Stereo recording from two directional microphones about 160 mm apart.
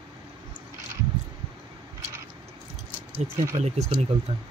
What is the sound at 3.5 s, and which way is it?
Speech, 45° right (ahead or behind).